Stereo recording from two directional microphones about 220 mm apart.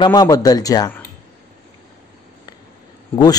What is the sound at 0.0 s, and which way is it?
A man's voice, 20° left (ahead or behind).